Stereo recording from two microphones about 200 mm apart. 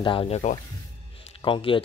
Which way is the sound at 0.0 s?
25° left (ahead or behind).